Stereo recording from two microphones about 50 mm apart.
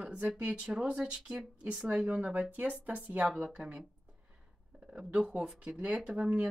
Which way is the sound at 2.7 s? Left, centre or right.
Right.